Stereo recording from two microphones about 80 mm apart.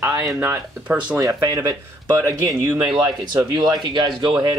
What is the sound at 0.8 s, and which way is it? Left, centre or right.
Speech, centre.